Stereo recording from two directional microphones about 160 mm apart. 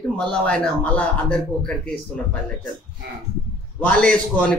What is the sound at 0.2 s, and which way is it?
A man's voice, 5° left (ahead or behind).